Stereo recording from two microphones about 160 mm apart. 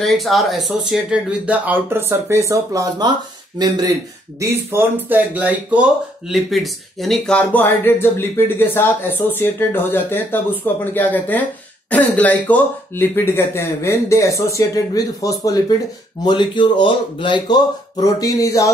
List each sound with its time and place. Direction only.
0.0 s speech: centre (ahead or behind); by 18.7 s 20° left (ahead or behind)